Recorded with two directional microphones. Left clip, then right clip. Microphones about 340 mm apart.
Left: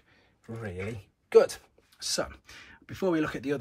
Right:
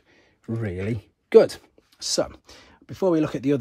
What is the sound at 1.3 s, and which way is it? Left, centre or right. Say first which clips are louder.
Speech: right 6 dB; right.